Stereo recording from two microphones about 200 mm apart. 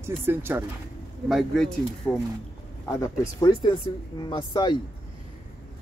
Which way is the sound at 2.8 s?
15° left (ahead or behind).